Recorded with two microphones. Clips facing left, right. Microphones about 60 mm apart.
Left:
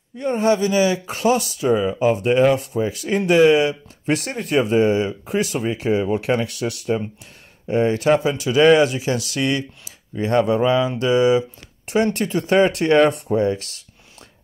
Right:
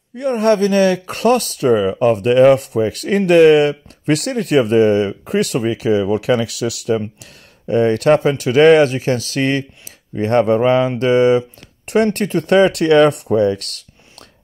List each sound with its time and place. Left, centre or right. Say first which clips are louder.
0.2 s speech: right 4 dB; right
7.6 s speech: right 4 dB; right